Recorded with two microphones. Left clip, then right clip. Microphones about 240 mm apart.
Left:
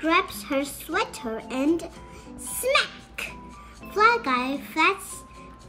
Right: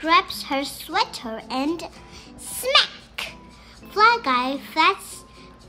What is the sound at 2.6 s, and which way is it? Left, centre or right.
Music, centre.